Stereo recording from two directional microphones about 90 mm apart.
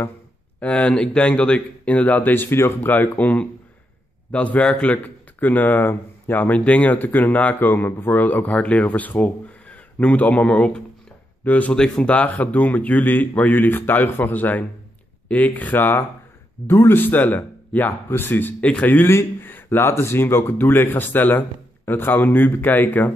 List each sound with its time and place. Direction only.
0.6 s a man's voice: 15° left (ahead or behind)